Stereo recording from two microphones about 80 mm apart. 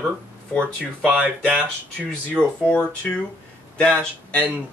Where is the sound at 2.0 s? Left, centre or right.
Centre.